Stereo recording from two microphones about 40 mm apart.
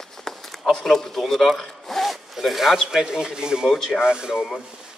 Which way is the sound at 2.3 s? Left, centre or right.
Centre.